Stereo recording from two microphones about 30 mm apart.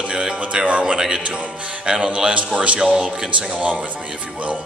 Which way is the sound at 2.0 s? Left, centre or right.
Right.